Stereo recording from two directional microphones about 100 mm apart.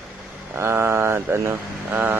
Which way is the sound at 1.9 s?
20° right (ahead or behind).